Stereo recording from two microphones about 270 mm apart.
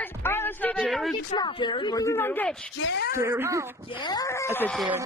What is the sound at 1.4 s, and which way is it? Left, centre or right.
Speech, centre.